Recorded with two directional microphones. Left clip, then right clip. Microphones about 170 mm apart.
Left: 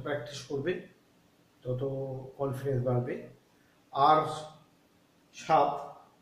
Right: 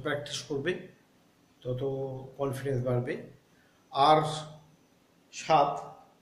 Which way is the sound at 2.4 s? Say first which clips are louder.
Right 1 dB; 15° right (ahead or behind).